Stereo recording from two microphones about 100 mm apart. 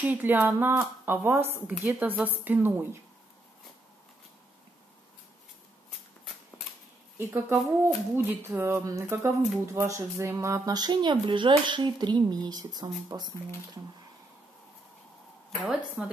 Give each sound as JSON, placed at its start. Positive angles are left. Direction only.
{"t": 0.0, "sound": "speech", "side_deg": -15}
{"t": 7.2, "sound": "speech", "side_deg": -20}
{"t": 15.6, "sound": "speech", "side_deg": -5}